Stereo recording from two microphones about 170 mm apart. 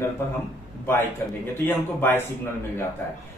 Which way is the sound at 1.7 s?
10° left (ahead or behind).